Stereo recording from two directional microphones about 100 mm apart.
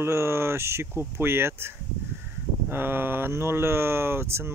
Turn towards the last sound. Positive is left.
turn(degrees=-25)  # may be behind; listen again after turning